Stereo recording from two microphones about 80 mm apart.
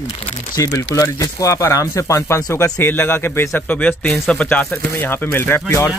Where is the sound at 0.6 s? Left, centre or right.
Left.